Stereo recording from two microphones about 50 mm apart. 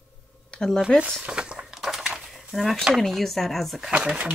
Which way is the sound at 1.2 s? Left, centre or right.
Right.